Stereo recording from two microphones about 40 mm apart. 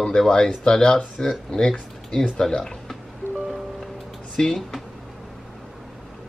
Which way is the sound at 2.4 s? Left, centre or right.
Centre.